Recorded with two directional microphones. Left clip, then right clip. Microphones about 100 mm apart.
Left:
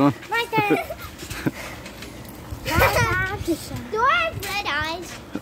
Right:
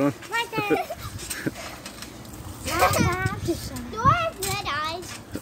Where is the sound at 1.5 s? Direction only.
30° left (ahead or behind).